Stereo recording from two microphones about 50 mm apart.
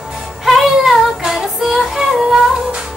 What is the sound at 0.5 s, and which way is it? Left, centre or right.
Music, centre.